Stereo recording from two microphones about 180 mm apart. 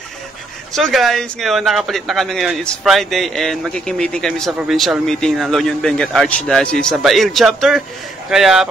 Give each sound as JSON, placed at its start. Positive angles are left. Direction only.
{"t": 0.7, "sound": "a man's voice", "side_deg": 0}